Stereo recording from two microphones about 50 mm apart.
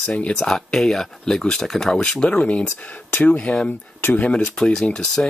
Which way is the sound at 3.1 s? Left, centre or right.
Left.